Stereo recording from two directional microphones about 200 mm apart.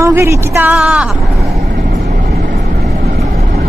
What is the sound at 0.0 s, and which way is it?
A woman's voice, 15° right (ahead or behind).